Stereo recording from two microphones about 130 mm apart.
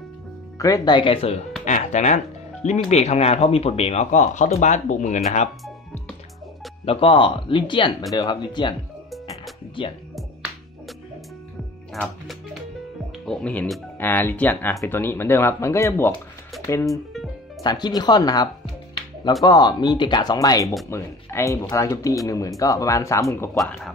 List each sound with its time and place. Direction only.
0.6 s speech: 25° left (ahead or behind); by 1.4 s 45° left (ahead or behind)
1.6 s music: 65° left (ahead or behind)
2.9 s speech: 55° left (ahead or behind)
6.9 s speech: 45° left (ahead or behind)
9.8 s speech: 40° left (ahead or behind)
11.9 s speech: centre (ahead or behind); by 16.2 s 20° left (ahead or behind)
16.8 s speech: centre (ahead or behind)
17.6 s speech: 35° left (ahead or behind)
23.5 s speech: centre (ahead or behind)